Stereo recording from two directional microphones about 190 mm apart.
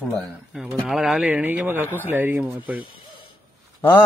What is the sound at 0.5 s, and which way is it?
Speech, centre (ahead or behind).